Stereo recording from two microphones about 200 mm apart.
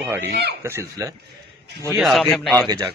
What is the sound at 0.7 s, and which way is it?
Speech, 15° right (ahead or behind).